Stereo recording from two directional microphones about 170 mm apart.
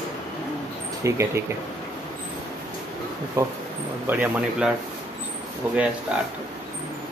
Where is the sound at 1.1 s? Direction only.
15° right (ahead or behind).